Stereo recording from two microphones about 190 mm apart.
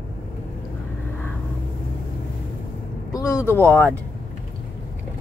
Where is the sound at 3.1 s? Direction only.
15° left (ahead or behind).